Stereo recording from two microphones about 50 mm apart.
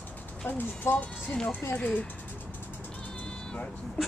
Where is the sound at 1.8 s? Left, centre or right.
Left.